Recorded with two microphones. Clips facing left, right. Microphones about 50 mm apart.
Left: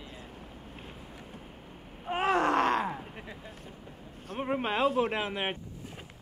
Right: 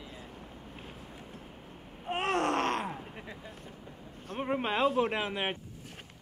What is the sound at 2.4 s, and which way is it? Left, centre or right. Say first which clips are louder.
Groan: left 4 dB; right.